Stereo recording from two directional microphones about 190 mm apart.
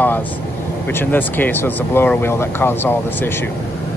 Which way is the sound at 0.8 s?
10° left (ahead or behind).